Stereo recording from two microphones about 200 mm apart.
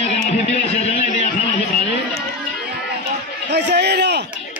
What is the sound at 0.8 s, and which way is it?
Music, 35° left (ahead or behind).